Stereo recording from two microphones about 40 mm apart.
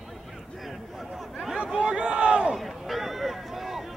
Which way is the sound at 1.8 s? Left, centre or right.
Right.